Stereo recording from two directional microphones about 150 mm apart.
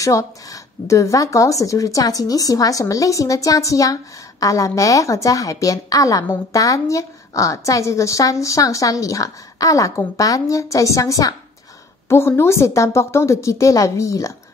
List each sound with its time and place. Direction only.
0.0 s speech: 20° left (ahead or behind)